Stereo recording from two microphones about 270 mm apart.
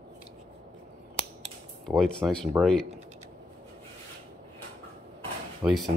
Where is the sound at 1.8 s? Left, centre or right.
Centre.